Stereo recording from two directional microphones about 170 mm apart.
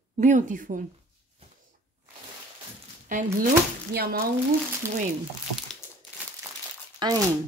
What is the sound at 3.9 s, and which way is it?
Speech, 65° right (ahead or behind).